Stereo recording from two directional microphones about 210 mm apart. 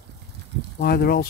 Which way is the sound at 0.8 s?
45° left (ahead or behind).